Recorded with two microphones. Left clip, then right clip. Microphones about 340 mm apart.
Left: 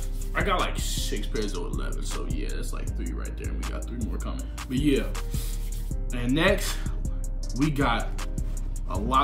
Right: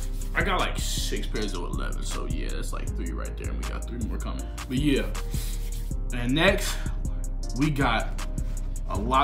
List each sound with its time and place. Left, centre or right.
0.3 s speech: centre